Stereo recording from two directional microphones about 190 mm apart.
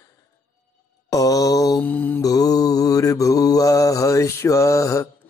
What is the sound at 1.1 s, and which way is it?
Mantra, 20° left (ahead or behind).